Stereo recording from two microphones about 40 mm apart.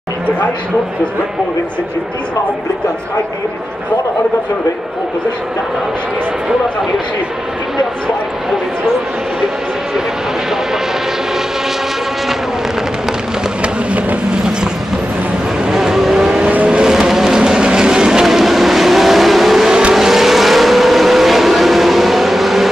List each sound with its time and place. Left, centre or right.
15.7 s vehicle: centre
18.2 s vehicle: centre